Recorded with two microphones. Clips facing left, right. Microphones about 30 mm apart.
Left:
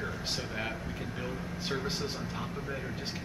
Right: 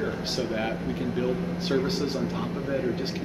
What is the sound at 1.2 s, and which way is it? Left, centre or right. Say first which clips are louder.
Speech: right 9 dB; centre.